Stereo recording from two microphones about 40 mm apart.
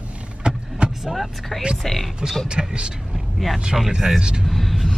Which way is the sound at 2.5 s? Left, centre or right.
Right.